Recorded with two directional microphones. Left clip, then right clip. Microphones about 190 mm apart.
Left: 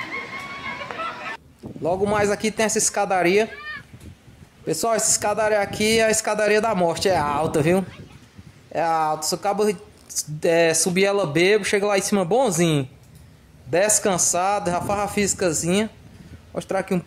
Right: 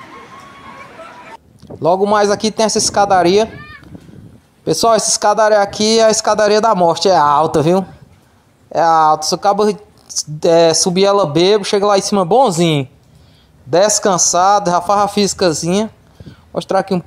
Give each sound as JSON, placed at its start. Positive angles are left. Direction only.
{"t": 1.8, "sound": "speech", "side_deg": -25}
{"t": 4.6, "sound": "speech", "side_deg": -25}
{"t": 13.7, "sound": "speech", "side_deg": -20}
{"t": 15.6, "sound": "speech", "side_deg": 0}
{"t": 16.5, "sound": "speech", "side_deg": -20}